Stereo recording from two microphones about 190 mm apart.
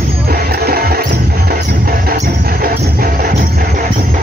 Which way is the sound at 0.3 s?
55° right (ahead or behind).